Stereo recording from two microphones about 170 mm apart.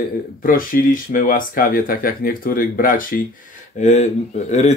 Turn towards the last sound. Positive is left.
turn(degrees=40)  # may be behind; listen again after turning